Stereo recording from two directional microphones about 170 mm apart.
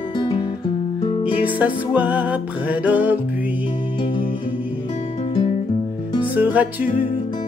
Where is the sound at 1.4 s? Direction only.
10° right (ahead or behind).